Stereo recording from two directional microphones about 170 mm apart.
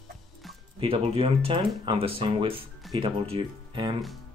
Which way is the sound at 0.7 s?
30° right (ahead or behind).